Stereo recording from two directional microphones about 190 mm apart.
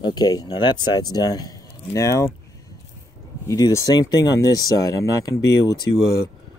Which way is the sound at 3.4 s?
20° left (ahead or behind).